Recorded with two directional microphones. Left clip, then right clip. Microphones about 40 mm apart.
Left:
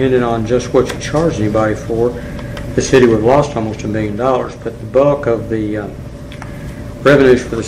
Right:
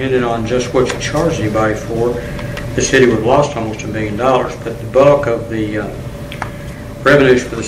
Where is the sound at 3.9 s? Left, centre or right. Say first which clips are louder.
Right 2 dB; left.